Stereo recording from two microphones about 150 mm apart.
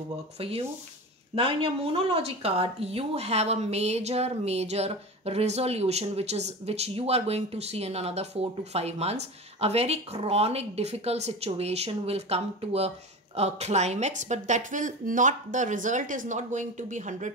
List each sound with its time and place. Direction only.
0.4 s a woman's voice: 40° right (ahead or behind); by 17.3 s 55° right (ahead or behind)